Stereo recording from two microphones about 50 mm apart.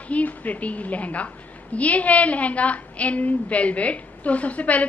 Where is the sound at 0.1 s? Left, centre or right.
Left.